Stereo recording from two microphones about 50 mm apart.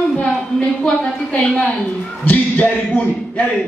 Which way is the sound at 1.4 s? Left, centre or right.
Left.